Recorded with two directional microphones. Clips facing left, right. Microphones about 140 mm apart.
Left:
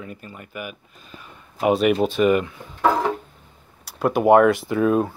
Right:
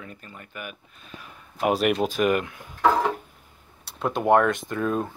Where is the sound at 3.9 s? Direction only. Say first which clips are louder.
Left 5 dB; 5° left (ahead or behind).